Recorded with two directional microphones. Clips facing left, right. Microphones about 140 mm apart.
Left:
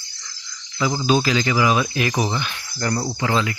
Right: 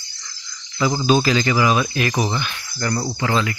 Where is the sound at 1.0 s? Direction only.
5° left (ahead or behind).